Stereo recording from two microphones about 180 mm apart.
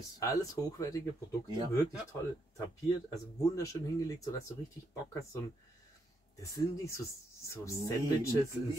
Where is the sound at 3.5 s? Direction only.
20° left (ahead or behind).